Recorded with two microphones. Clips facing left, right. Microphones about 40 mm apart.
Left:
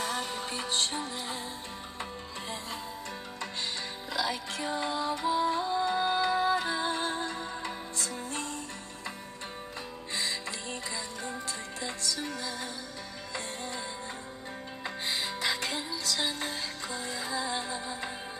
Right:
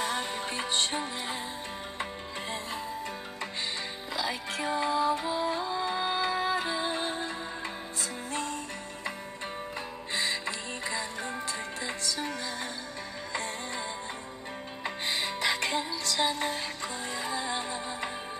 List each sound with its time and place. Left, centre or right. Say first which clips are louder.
0.0 s music: right 2 dB; right
4.1 s music: left 1 dB; right
5.2 s music: left 2 dB; centre; by 8.5 s right
10.1 s music: right 3 dB; right
15.0 s music: right 2 dB; right